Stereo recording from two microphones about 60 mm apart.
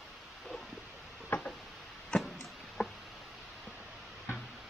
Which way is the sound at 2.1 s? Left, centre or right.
Centre.